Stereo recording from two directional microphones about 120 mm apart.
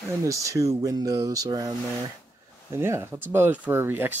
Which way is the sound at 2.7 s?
20° right (ahead or behind).